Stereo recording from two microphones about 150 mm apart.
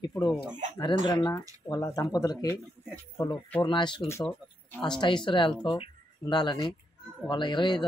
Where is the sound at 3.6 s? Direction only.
30° left (ahead or behind).